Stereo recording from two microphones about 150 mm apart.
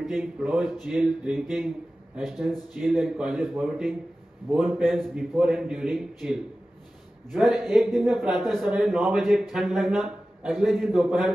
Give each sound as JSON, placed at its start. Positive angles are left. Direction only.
{"t": 0.0, "sound": "a man's voice", "side_deg": 0}